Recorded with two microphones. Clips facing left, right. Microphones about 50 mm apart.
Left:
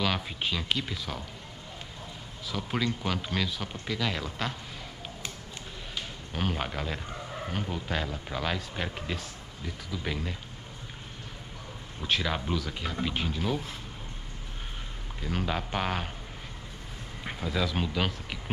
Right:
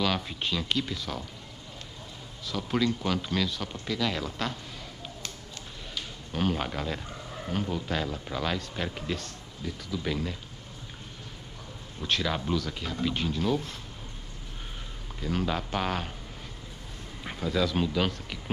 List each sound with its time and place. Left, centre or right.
0.0 s speech: centre
2.4 s speech: centre
6.3 s speech: centre
12.0 s speech: centre
15.2 s speech: centre
17.2 s speech: centre